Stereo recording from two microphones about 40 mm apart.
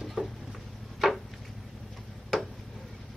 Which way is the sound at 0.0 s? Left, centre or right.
Centre.